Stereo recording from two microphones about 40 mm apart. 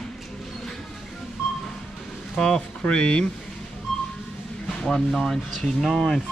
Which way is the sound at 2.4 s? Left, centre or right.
Left.